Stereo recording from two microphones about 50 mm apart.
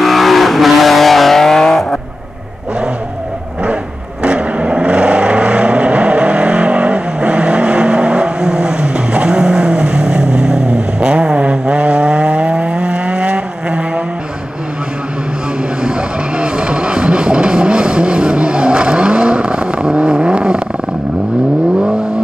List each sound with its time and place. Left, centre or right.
0.0 s vehicle: centre
4.2 s vehicle: right
15.8 s vehicle: centre